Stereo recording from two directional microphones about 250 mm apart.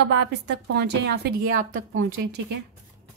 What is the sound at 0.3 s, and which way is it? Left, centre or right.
A woman's voice, right.